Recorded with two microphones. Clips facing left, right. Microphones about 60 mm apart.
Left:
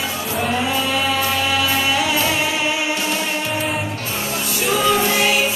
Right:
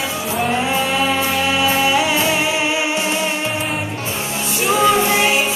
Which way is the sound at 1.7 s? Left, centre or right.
Right.